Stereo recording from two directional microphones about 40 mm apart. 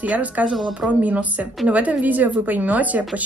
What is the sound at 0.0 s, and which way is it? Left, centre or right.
A woman's voice, right.